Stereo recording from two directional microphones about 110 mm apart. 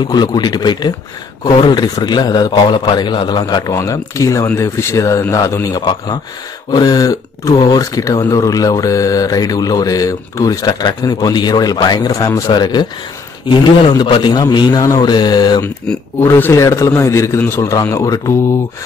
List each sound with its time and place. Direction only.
0.0 s a man's voice: 40° left (ahead or behind)
16.2 s a man's voice: 20° left (ahead or behind)